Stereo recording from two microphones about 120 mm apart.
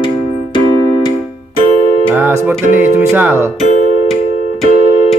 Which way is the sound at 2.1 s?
15° right (ahead or behind).